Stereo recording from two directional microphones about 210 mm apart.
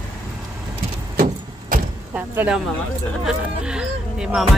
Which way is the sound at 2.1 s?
5° right (ahead or behind).